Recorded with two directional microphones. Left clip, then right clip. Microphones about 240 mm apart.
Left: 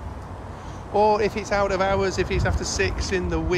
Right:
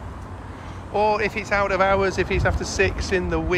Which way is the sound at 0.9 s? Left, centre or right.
Centre.